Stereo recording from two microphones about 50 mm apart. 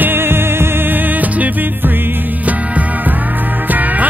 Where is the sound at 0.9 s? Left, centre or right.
Right.